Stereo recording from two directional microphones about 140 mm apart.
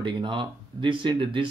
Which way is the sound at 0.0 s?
35° right (ahead or behind).